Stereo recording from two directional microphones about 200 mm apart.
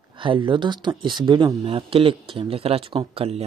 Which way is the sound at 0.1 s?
25° right (ahead or behind).